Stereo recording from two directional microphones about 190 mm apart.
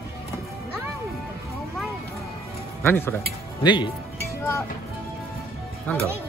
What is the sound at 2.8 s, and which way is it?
Speech, 10° left (ahead or behind).